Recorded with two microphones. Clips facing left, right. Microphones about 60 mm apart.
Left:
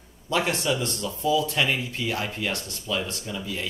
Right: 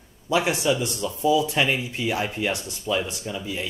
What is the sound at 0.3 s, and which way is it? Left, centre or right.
Speech, centre.